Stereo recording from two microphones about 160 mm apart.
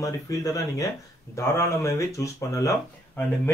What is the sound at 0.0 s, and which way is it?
Speech, 20° left (ahead or behind).